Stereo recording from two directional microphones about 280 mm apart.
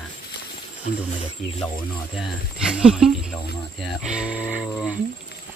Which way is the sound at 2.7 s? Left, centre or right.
Centre.